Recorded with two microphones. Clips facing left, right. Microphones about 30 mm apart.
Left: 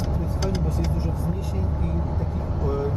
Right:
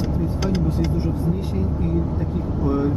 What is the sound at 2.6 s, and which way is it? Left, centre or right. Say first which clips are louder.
Speech: right 5 dB; right.